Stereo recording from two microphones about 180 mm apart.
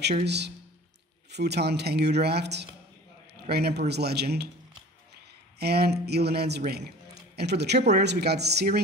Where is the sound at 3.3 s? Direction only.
65° right (ahead or behind).